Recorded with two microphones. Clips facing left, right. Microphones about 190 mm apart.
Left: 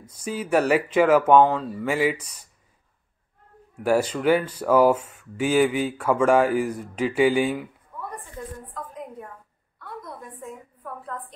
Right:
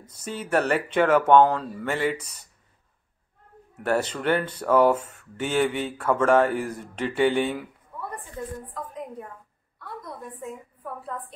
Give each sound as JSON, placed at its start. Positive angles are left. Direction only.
{"t": 0.0, "sound": "speech", "side_deg": 10}
{"t": 3.8, "sound": "speech", "side_deg": 10}
{"t": 10.0, "sound": "a woman's voice", "side_deg": -5}